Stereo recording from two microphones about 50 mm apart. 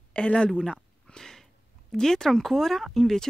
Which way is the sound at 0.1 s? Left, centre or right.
Left.